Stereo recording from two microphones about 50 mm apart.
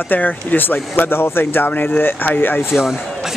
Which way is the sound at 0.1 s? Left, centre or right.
Left.